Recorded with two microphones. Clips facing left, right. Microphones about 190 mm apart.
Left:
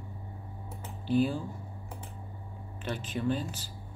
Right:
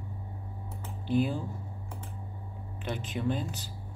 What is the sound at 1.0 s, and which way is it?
Speech, 15° right (ahead or behind).